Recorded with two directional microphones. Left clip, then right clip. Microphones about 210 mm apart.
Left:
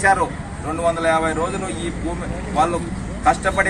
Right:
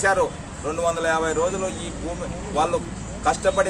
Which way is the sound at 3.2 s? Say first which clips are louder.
Left 3 dB; 10° right (ahead or behind).